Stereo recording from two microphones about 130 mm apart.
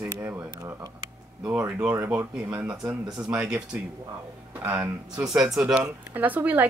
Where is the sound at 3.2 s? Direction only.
5° right (ahead or behind).